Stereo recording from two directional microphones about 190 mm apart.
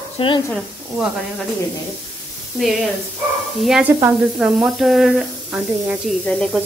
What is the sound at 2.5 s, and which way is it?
Speech, centre (ahead or behind).